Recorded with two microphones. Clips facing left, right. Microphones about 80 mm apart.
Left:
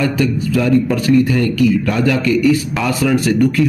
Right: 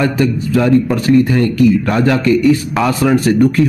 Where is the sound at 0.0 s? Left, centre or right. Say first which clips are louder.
Right 2 dB; right.